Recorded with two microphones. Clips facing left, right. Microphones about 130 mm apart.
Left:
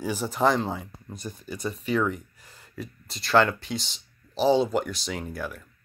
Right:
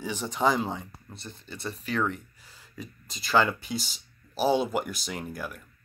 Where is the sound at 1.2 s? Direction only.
10° left (ahead or behind).